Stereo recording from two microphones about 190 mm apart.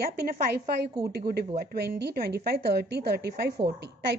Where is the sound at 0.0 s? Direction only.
55° right (ahead or behind).